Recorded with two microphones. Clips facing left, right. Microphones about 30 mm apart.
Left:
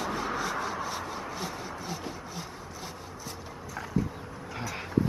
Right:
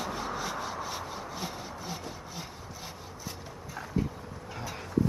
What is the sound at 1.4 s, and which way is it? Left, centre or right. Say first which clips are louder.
Sawing: left 2 dB; centre.